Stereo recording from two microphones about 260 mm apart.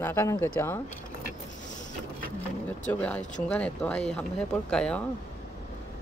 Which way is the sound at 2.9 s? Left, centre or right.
Centre.